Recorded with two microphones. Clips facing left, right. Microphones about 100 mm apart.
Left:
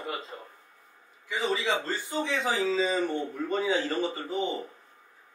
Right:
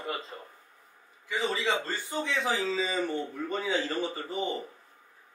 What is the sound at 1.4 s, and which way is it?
A man's voice, 5° left (ahead or behind).